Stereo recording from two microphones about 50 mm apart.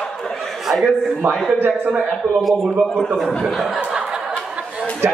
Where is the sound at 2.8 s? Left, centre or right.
Centre.